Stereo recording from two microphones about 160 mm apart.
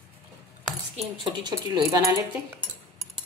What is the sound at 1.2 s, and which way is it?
Speech, 25° right (ahead or behind).